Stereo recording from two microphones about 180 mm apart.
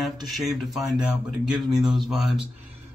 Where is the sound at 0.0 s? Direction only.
Centre (ahead or behind).